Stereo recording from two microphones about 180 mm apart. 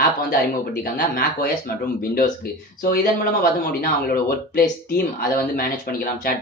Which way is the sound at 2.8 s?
55° left (ahead or behind).